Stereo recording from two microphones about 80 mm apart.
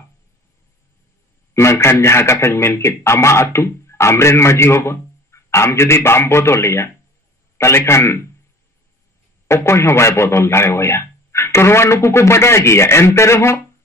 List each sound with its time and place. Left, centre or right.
1.5 s speech: left
9.5 s speech: left